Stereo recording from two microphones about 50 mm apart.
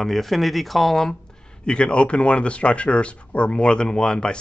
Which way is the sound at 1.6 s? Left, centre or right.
Centre.